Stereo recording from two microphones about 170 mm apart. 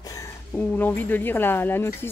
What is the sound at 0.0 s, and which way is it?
Speech, 15° left (ahead or behind).